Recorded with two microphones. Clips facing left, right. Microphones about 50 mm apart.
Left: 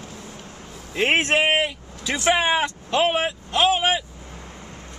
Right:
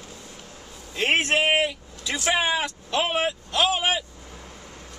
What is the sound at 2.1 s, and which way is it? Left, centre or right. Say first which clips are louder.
Speech: left 4 dB; left.